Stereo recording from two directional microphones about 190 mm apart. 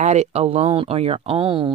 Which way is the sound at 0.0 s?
35° right (ahead or behind).